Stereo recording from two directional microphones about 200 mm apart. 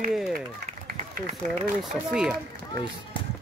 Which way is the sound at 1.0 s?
40° right (ahead or behind).